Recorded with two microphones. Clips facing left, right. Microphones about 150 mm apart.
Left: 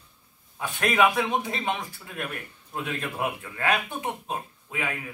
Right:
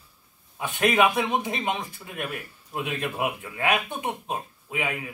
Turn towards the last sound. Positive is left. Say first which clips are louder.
# right 2 dB
turn(degrees=-15)  # may be behind; listen again after turning